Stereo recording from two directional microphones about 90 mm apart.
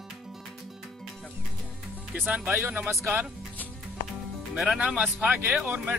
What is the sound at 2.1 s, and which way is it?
Speech, 15° right (ahead or behind).